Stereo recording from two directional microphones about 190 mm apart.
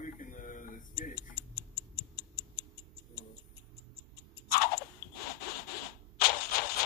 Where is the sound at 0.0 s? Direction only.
45° left (ahead or behind).